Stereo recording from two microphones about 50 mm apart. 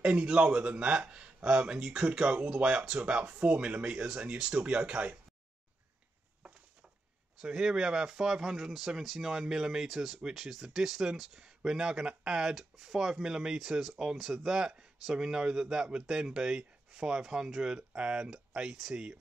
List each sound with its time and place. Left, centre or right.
0.0 s speech: right
7.4 s speech: centre